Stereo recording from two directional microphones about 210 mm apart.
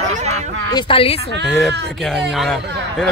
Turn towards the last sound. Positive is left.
turn(degrees=0)  # may be behind; listen again after turning